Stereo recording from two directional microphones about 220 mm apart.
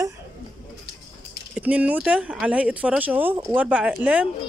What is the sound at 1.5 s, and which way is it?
Speech, 5° right (ahead or behind).